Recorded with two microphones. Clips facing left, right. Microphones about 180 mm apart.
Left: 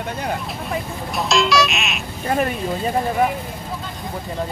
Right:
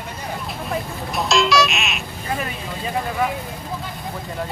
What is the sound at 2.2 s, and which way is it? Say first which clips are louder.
Speech: left 7 dB; 55° left (ahead or behind).